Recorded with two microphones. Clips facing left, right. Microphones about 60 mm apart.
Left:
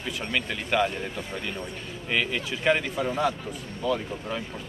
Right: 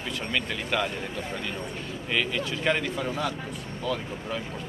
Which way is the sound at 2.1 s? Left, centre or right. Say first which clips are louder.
Left 1 dB; centre.